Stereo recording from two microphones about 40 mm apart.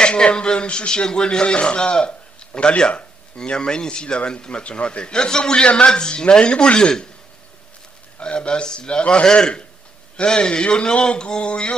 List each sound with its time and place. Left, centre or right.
0.0 s speech: left
8.2 s speech: left